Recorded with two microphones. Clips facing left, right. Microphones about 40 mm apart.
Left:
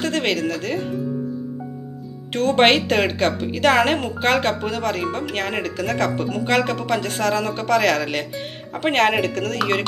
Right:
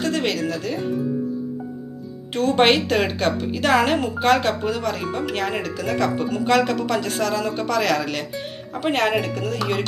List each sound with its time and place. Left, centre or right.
0.0 s speech: left
2.3 s speech: left
6.3 s speech: left